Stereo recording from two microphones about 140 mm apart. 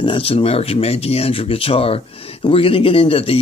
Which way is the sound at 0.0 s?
40° left (ahead or behind).